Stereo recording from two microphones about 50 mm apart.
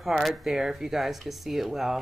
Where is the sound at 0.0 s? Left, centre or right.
Centre.